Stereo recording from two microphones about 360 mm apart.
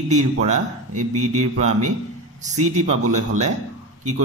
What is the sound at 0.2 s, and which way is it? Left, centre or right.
Speech, centre.